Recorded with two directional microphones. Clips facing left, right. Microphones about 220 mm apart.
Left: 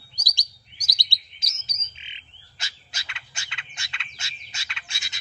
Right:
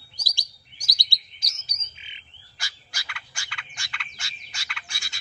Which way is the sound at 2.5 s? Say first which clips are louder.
Even; 25° left (ahead or behind).